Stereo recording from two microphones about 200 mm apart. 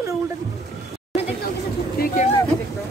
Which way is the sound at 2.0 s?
50° left (ahead or behind).